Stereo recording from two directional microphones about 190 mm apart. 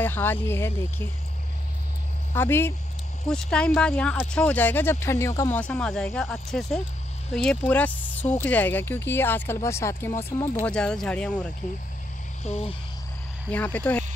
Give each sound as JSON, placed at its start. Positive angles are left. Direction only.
{"t": 0.0, "sound": "speech", "side_deg": 10}
{"t": 2.3, "sound": "speech", "side_deg": 10}
{"t": 10.6, "sound": "speech", "side_deg": 5}
{"t": 12.4, "sound": "cricket", "side_deg": 35}
{"t": 13.5, "sound": "speech", "side_deg": 10}